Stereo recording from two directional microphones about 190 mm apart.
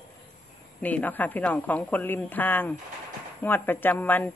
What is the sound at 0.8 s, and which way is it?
A woman's voice, 10° left (ahead or behind).